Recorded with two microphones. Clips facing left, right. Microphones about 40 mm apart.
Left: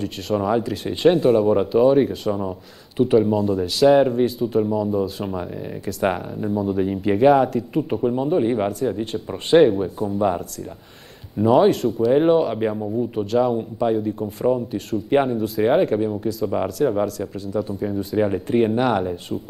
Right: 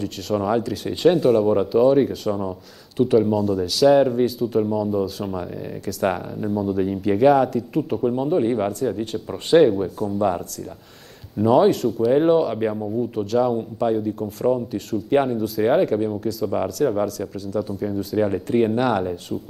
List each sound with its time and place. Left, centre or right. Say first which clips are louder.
0.0 s speech: left 1 dB; centre
1.6 s speech: even; centre